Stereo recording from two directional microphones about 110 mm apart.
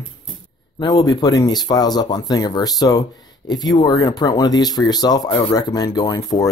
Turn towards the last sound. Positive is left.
turn(degrees=30)  # may be behind; listen again after turning